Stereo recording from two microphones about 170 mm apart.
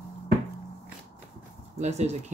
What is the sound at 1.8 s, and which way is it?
Speech, 40° right (ahead or behind).